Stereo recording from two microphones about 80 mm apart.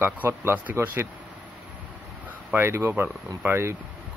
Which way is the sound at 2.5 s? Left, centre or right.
Right.